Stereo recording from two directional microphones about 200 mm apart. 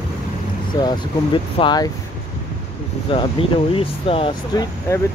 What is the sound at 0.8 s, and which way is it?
Speech, 25° left (ahead or behind).